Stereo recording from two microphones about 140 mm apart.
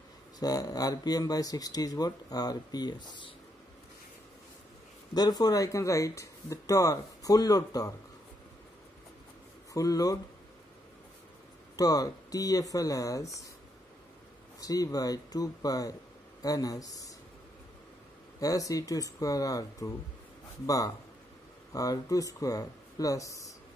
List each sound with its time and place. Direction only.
0.4 s speech: 25° left (ahead or behind)
5.1 s speech: 30° left (ahead or behind)
9.8 s speech: 25° left (ahead or behind)
11.7 s speech: 25° left (ahead or behind)
14.6 s speech: 25° left (ahead or behind)
18.4 s speech: 25° left (ahead or behind)